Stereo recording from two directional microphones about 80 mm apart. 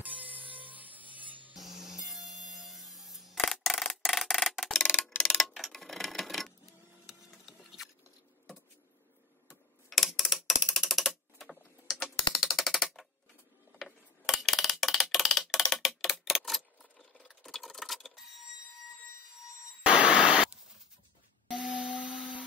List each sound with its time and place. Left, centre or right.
0.0 s music: centre
1.5 s music: centre
3.8 s clock: centre
5.1 s clock: left
5.4 s tick-tock: centre
7.1 s a sound: centre
9.5 s typewriter: centre
13.7 s tick-tock: centre
17.2 s clock: centre
19.8 s a sound: centre
21.5 s a sound: centre